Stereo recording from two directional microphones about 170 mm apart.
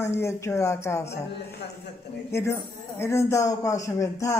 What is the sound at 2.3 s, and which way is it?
Speech, 15° left (ahead or behind).